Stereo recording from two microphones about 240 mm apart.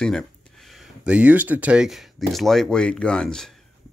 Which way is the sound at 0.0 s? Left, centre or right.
Centre.